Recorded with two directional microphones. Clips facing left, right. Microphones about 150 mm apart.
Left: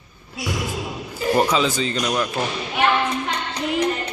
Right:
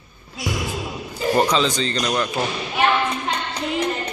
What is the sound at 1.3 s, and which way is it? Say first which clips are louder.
Speech: even; 5° left (ahead or behind).